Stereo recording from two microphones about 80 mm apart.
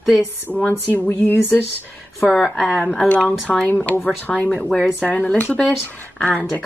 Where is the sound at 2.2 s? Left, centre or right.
Centre.